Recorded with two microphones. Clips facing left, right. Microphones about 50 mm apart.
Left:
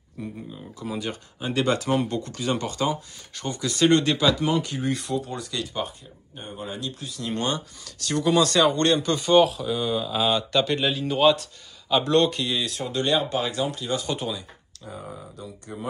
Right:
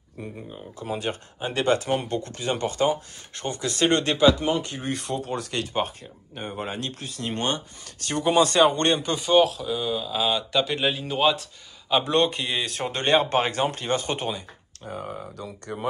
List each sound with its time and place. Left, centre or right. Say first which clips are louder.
0.7 s speech: right 2 dB; right
2.7 s speech: right 3 dB; right
4.8 s speech: left 2 dB; right
6.3 s speech: right 3 dB; right
9.1 s speech: left 1 dB; centre
11.9 s speech: left 1 dB; right